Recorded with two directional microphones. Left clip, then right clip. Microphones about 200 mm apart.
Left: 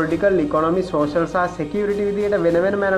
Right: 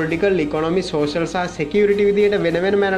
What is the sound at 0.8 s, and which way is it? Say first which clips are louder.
Speech: even; 20° right (ahead or behind).